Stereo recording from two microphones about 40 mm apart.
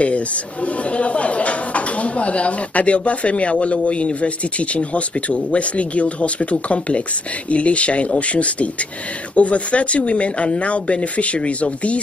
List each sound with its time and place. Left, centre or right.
0.9 s speech: left